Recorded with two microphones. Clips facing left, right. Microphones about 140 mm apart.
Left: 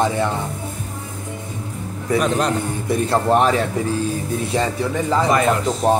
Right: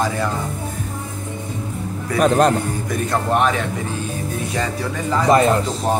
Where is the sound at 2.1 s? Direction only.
50° right (ahead or behind).